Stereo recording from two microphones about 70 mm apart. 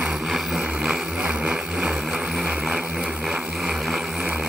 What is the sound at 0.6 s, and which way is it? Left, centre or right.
Vehicle, centre.